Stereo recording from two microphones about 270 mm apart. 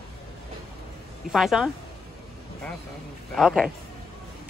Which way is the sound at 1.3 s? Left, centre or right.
Centre.